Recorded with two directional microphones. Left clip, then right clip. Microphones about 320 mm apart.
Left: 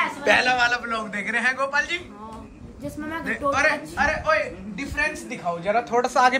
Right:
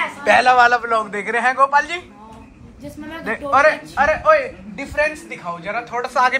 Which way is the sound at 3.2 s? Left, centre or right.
Centre.